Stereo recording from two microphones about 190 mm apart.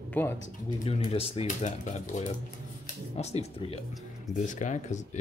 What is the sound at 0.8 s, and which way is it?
Speech, 30° left (ahead or behind).